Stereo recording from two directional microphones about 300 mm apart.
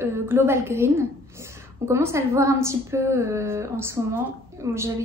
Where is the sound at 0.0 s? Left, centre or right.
Centre.